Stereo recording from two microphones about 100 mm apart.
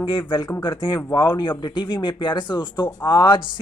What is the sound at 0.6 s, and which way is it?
Speech, 50° left (ahead or behind).